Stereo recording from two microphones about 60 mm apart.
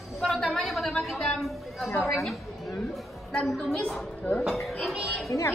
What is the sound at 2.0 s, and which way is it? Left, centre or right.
Speech, centre.